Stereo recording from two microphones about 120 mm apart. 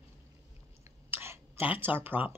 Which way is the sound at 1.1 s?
20° right (ahead or behind).